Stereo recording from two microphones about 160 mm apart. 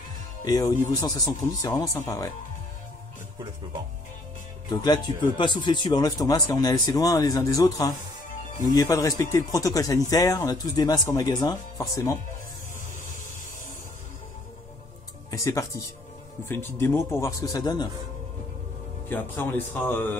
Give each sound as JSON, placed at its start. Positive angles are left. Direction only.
{"t": 0.5, "sound": "speech", "side_deg": 25}
{"t": 4.6, "sound": "speech", "side_deg": 25}
{"t": 15.3, "sound": "speech", "side_deg": 20}
{"t": 19.0, "sound": "speech", "side_deg": 10}